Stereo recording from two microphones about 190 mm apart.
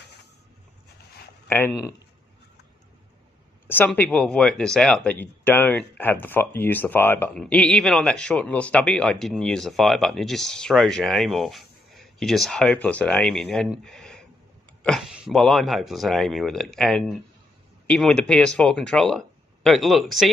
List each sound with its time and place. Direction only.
1.5 s speech: 10° left (ahead or behind)
3.6 s speech: 10° left (ahead or behind)